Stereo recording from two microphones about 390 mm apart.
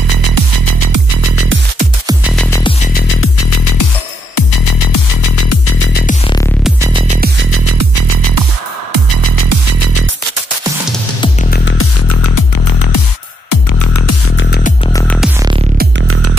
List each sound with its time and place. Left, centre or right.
0.2 s music: right
2.0 s music: centre
2.9 s music: left
3.4 s music: left
4.4 s music: left
6.6 s music: centre
7.5 s music: right
11.5 s music: left
12.1 s music: left
13.5 s music: left
14.9 s music: centre
15.8 s music: right